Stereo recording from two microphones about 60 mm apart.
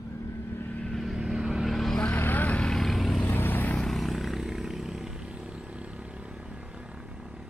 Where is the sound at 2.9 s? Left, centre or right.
Centre.